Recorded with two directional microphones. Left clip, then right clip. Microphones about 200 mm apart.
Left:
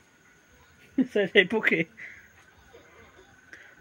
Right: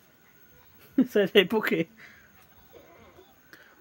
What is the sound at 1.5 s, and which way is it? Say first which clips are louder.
Speech: left 2 dB; 10° right (ahead or behind).